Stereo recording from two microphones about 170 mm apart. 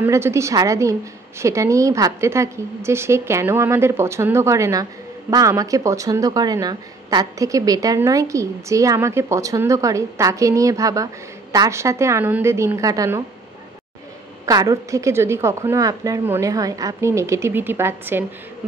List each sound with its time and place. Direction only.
0.0 s a woman's voice: 15° right (ahead or behind)
14.4 s a woman's voice: 20° right (ahead or behind)